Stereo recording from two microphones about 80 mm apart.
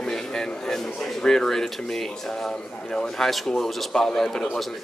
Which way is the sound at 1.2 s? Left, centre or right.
Centre.